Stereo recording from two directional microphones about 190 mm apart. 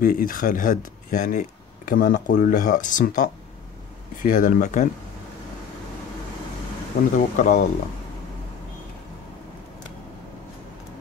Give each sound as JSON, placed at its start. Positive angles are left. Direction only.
{"t": 0.0, "sound": "speech", "side_deg": 45}
{"t": 7.2, "sound": "speech", "side_deg": 40}